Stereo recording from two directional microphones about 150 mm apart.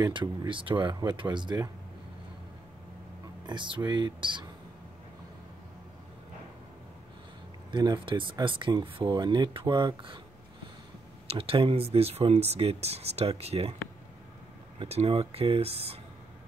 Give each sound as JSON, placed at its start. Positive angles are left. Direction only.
{"t": 0.0, "sound": "speech", "side_deg": -30}
{"t": 3.4, "sound": "speech", "side_deg": -30}
{"t": 7.7, "sound": "speech", "side_deg": -30}
{"t": 11.2, "sound": "speech", "side_deg": -40}
{"t": 14.8, "sound": "speech", "side_deg": -40}